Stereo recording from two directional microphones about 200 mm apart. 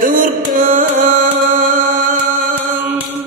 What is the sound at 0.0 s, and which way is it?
Music, 40° right (ahead or behind).